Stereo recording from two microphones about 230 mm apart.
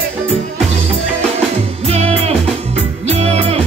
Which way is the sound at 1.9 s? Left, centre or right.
Right.